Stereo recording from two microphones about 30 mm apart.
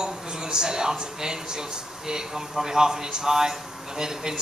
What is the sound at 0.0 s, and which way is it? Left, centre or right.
Speech, right.